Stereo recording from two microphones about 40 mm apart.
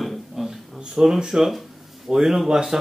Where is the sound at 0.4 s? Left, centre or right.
Centre.